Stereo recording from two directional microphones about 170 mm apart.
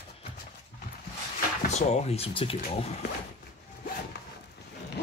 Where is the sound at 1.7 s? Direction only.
40° left (ahead or behind).